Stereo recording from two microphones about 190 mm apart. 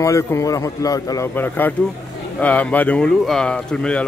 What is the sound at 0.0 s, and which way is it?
A man's voice, 15° left (ahead or behind).